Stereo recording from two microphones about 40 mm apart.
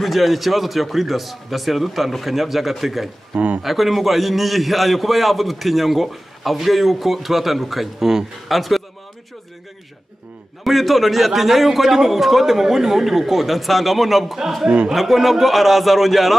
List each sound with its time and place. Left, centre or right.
0.0 s a man's voice: centre
3.3 s speech: right
3.6 s a man's voice: centre
10.6 s a man's voice: centre